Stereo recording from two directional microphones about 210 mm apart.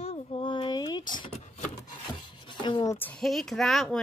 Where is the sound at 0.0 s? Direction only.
30° left (ahead or behind).